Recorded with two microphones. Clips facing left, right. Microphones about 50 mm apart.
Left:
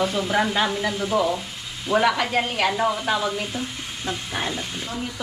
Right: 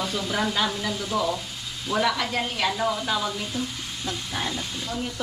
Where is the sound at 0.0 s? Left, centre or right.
Left.